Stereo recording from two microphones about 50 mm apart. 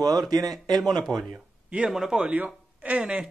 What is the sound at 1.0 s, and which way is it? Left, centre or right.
Speech, centre.